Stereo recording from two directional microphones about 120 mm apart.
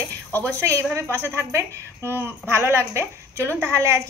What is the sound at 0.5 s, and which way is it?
A woman's voice, 25° right (ahead or behind).